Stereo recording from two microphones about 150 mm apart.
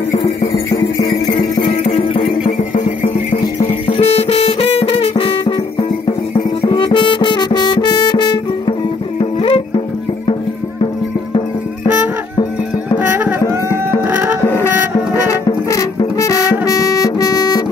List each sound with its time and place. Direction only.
1.7 s music: 45° left (ahead or behind)
3.5 s music: 40° left (ahead or behind)
13.5 s music: 15° right (ahead or behind)
15.2 s music: 20° left (ahead or behind)